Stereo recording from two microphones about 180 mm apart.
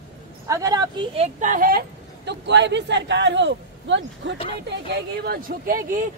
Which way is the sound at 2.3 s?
75° right (ahead or behind).